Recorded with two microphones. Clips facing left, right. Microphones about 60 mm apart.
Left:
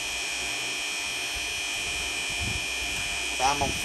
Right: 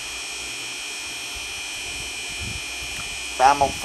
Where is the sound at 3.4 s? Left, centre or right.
Right.